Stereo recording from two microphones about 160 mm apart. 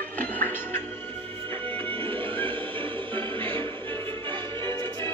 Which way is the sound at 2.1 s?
30° right (ahead or behind).